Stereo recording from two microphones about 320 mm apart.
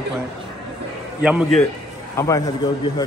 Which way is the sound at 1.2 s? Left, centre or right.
Centre.